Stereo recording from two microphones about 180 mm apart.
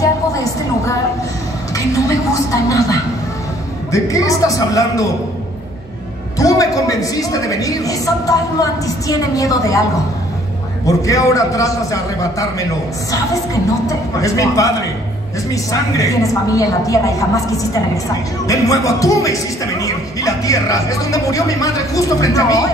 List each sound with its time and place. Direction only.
0.0 s a sound: 20° left (ahead or behind)
3.9 s speech: 20° left (ahead or behind)
6.3 s speech: 20° left (ahead or behind)
10.9 s a woman's voice: 20° left (ahead or behind)
13.8 s a woman's voice: 20° left (ahead or behind)